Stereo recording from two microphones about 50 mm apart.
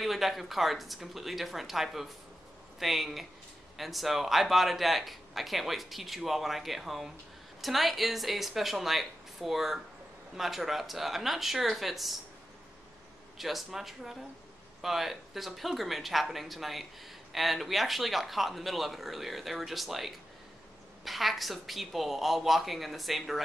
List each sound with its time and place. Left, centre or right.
0.0 s speech: centre
13.4 s speech: centre